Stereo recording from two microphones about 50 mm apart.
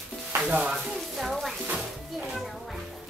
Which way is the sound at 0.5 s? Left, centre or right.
Centre.